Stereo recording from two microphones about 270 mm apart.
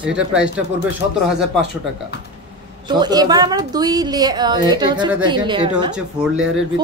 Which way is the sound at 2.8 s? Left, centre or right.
Centre.